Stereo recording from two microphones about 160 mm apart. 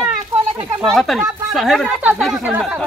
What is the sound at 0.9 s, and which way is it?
Speech, centre (ahead or behind).